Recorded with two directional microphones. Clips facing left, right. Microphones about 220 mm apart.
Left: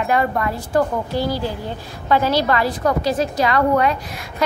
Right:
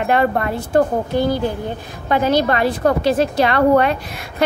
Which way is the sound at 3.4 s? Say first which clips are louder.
Right 2 dB; 60° right (ahead or behind).